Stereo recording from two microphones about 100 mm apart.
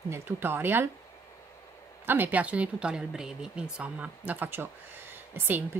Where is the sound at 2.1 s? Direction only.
20° right (ahead or behind).